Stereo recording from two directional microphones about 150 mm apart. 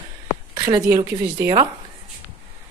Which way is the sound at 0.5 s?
25° right (ahead or behind).